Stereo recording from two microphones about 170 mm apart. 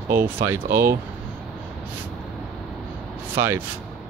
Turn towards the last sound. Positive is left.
turn(degrees=-15)  # may be behind; listen again after turning